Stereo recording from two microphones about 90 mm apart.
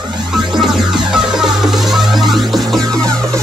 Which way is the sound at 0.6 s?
5° right (ahead or behind).